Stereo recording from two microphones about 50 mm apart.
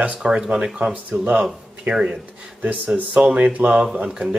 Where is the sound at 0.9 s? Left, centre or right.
Right.